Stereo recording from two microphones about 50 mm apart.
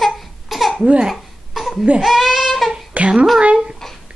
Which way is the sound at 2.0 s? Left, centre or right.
Centre.